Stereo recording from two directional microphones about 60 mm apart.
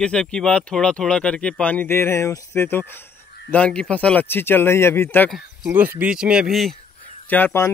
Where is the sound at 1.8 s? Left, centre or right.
Left.